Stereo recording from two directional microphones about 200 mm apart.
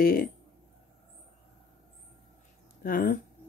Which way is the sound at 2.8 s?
45° left (ahead or behind).